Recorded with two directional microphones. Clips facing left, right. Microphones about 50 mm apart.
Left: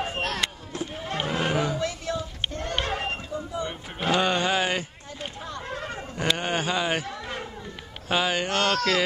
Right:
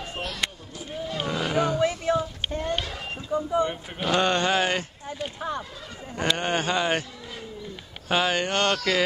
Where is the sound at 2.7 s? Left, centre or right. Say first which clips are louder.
Left 3 dB; left.